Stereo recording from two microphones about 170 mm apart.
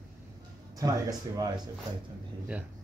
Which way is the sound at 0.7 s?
20° right (ahead or behind).